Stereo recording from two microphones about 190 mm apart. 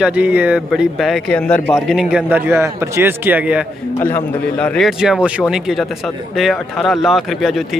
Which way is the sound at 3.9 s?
10° left (ahead or behind).